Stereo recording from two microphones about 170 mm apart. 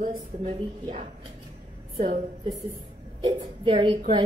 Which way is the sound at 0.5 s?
35° right (ahead or behind).